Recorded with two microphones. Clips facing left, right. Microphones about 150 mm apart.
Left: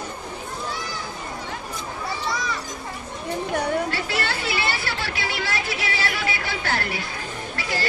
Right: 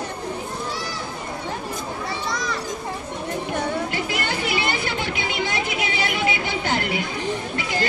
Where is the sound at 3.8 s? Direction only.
15° right (ahead or behind).